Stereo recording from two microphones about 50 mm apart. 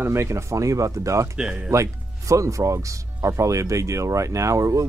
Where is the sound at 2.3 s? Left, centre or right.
Right.